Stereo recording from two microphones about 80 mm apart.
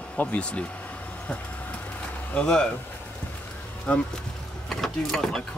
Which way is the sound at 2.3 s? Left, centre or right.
Centre.